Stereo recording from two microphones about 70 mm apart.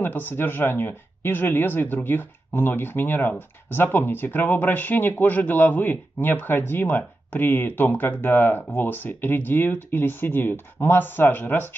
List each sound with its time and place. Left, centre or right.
0.0 s speech: left